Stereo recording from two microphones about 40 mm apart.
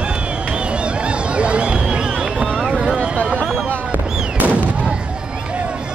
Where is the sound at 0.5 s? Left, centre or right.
Right.